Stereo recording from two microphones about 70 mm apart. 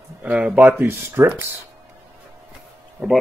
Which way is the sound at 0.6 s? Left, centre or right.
Right.